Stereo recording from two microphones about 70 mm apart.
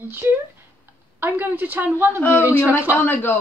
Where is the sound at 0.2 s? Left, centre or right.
Right.